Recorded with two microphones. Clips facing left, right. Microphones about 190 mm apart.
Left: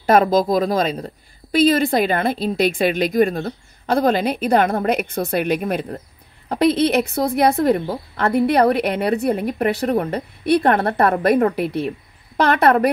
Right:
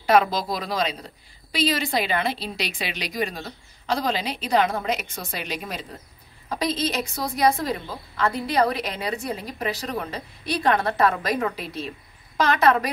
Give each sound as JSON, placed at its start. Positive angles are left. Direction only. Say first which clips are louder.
{"t": 0.0, "sound": "a woman's voice", "louder": "left 5 dB", "side_deg": 50}